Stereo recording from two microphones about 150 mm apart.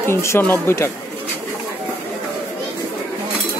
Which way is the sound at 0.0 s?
15° left (ahead or behind).